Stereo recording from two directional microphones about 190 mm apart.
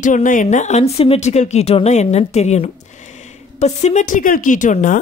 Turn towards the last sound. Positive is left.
turn(degrees=40)  # may be behind; listen again after turning